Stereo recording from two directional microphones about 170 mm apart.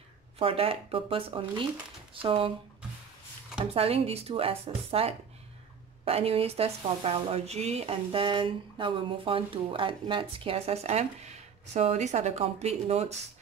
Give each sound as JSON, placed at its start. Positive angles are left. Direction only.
{"t": 0.4, "sound": "speech", "side_deg": -35}
{"t": 3.7, "sound": "speech", "side_deg": -35}